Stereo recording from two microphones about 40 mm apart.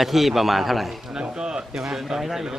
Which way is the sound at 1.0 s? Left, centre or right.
Centre.